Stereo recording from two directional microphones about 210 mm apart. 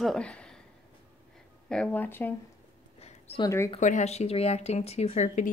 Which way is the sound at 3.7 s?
35° left (ahead or behind).